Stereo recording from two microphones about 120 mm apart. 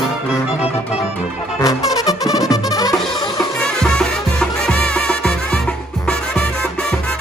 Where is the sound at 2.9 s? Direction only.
5° left (ahead or behind).